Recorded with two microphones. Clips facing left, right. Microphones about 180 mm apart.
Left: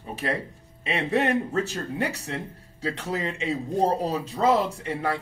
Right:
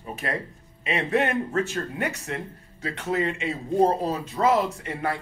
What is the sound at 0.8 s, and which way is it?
Speech, 35° left (ahead or behind).